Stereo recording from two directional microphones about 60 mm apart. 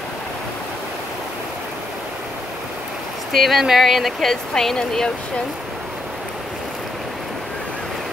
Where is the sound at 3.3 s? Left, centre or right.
Centre.